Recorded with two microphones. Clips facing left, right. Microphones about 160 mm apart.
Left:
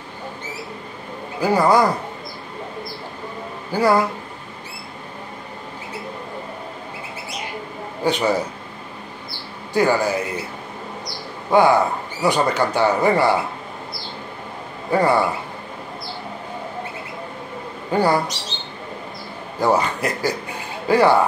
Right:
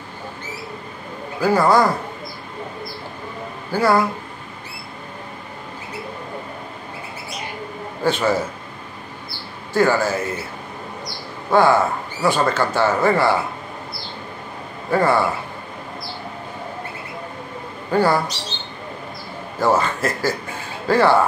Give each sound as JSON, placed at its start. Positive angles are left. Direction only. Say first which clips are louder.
{"t": 1.4, "sound": "a man's voice", "louder": "even", "side_deg": 15}
{"t": 3.7, "sound": "a man's voice", "louder": "even", "side_deg": 15}
{"t": 8.0, "sound": "a man's voice", "louder": "even", "side_deg": 15}
{"t": 9.8, "sound": "a man's voice", "louder": "even", "side_deg": 15}
{"t": 11.5, "sound": "a man's voice", "louder": "even", "side_deg": 15}
{"t": 14.9, "sound": "a man's voice", "louder": "even", "side_deg": 15}
{"t": 17.9, "sound": "a man's voice", "louder": "right 1 dB", "side_deg": 15}
{"t": 19.6, "sound": "a man's voice", "louder": "even", "side_deg": 15}